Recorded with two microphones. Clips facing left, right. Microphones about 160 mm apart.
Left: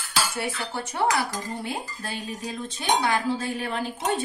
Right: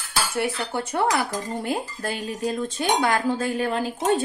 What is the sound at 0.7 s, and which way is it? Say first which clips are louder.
Speech: right 1 dB; 55° right (ahead or behind).